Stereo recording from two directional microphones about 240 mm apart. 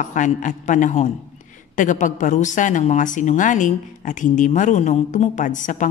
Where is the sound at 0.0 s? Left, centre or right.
Left.